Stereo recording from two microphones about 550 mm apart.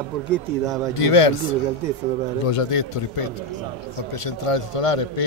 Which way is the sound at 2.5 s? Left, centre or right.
Left.